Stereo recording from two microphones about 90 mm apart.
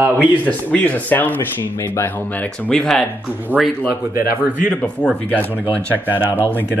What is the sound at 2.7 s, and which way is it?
Speech, 5° left (ahead or behind).